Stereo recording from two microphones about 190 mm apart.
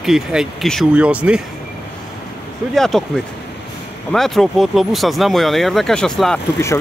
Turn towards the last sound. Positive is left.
turn(degrees=5)  # may be behind; listen again after turning